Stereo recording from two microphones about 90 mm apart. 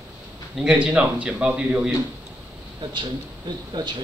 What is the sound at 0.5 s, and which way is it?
A man's voice, 10° right (ahead or behind).